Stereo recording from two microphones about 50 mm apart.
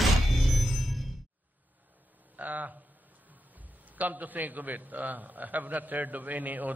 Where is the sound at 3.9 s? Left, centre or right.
Right.